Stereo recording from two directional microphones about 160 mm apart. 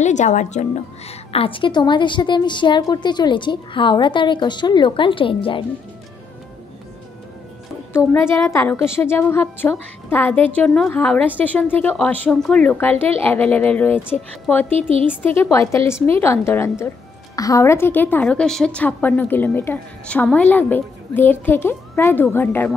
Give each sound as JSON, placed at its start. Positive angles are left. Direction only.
{"t": 0.0, "sound": "a woman's voice", "side_deg": 50}
{"t": 7.9, "sound": "a woman's voice", "side_deg": 15}
{"t": 14.7, "sound": "a woman's voice", "side_deg": -40}
{"t": 15.0, "sound": "a woman's voice", "side_deg": 10}